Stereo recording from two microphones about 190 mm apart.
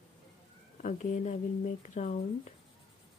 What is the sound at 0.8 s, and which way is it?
Speech, 40° left (ahead or behind).